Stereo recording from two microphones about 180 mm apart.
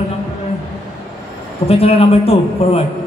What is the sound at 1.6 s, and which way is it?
A man's voice, 35° left (ahead or behind).